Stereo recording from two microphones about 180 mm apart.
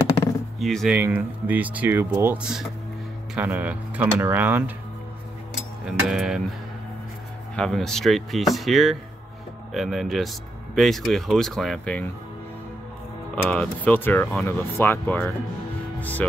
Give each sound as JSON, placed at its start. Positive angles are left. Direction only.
{"t": 0.6, "sound": "speech", "side_deg": 0}
{"t": 0.9, "sound": "speech", "side_deg": -10}
{"t": 5.9, "sound": "speech", "side_deg": -5}
{"t": 7.5, "sound": "speech", "side_deg": 0}
{"t": 13.4, "sound": "speech", "side_deg": 5}